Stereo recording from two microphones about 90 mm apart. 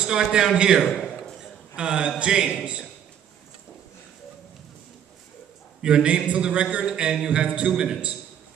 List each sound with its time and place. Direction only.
0.0 s a man's voice: 10° right (ahead or behind)
0.9 s a sound: 10° left (ahead or behind)
1.8 s a man's voice: 10° right (ahead or behind)
5.8 s a man's voice: 10° right (ahead or behind)